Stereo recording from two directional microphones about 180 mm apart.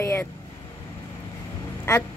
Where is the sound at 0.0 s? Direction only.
15° left (ahead or behind).